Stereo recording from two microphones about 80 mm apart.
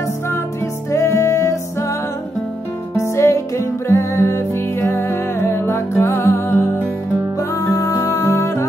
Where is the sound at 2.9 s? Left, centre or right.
Left.